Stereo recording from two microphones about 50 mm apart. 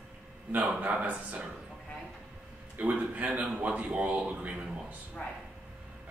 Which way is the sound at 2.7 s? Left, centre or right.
Right.